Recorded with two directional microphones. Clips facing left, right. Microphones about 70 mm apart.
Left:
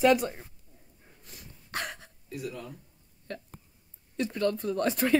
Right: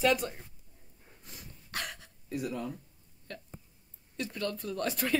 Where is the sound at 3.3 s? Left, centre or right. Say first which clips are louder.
Left 5 dB; left.